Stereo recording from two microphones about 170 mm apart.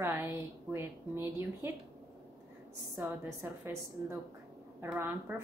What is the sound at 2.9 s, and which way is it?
A woman's voice, 15° right (ahead or behind).